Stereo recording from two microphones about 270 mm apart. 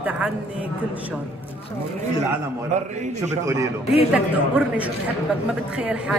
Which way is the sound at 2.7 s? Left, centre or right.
Right.